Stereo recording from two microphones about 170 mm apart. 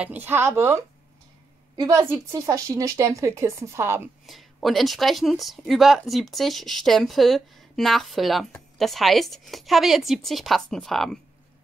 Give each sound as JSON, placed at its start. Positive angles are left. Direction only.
{"t": 0.0, "sound": "speech", "side_deg": -10}
{"t": 1.8, "sound": "speech", "side_deg": -15}
{"t": 4.3, "sound": "speech", "side_deg": 0}